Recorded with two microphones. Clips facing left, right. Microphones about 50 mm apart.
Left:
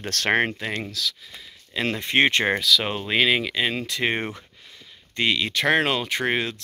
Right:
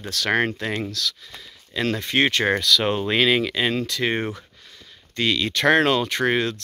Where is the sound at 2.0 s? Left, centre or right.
Left.